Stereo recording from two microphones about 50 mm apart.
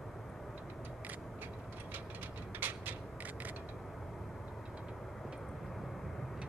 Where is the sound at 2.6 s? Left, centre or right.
Right.